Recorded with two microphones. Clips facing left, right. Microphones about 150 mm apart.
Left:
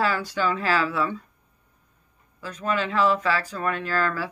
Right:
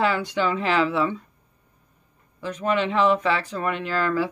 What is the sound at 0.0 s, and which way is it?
Speech, 20° right (ahead or behind).